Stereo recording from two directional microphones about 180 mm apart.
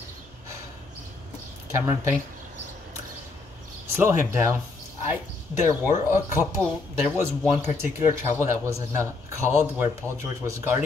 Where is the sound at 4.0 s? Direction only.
15° right (ahead or behind).